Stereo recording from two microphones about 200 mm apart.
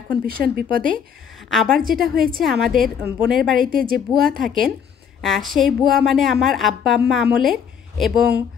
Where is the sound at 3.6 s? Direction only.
45° right (ahead or behind).